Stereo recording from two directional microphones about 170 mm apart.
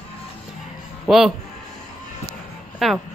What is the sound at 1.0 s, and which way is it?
Speech, centre (ahead or behind).